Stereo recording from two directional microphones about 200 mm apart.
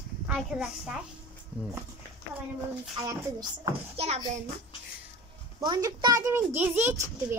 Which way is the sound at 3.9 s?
30° right (ahead or behind).